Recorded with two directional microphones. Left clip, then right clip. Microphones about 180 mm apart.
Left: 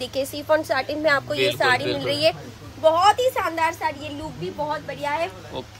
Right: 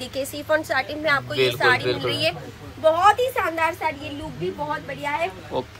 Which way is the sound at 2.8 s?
20° left (ahead or behind).